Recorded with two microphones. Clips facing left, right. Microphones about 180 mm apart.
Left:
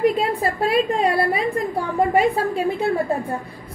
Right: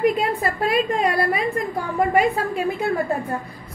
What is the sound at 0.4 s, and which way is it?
A woman's voice, 30° left (ahead or behind).